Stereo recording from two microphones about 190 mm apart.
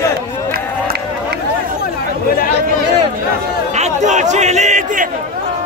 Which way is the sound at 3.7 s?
40° right (ahead or behind).